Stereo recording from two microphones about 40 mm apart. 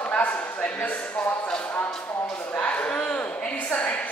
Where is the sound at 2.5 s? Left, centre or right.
Left.